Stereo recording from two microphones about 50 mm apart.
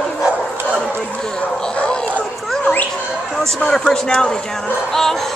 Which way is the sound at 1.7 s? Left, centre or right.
Centre.